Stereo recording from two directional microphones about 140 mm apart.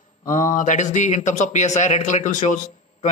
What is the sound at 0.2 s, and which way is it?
A man's voice, 65° left (ahead or behind).